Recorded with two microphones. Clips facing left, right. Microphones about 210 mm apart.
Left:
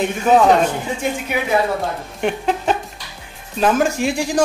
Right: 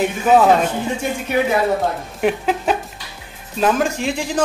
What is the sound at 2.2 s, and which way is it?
Speech, 5° right (ahead or behind).